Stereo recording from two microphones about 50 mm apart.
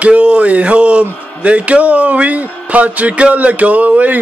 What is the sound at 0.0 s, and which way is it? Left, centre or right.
Speech, right.